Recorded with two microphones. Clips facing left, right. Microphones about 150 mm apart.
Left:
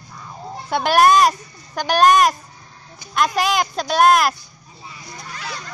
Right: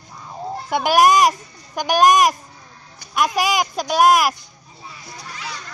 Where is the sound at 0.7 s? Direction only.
10° right (ahead or behind).